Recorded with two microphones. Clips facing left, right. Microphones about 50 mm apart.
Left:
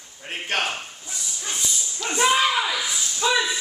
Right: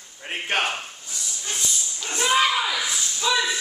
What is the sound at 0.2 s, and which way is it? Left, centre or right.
Speech, centre.